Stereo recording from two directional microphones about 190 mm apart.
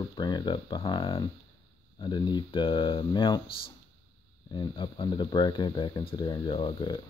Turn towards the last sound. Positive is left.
turn(degrees=25)  # may be behind; listen again after turning